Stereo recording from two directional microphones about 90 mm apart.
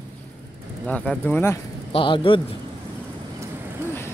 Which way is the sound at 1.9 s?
70° left (ahead or behind).